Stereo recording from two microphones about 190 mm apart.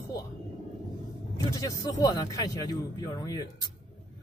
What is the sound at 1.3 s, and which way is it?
Speech, 20° left (ahead or behind).